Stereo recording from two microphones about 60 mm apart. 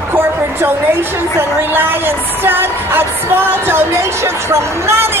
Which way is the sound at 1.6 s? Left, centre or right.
Right.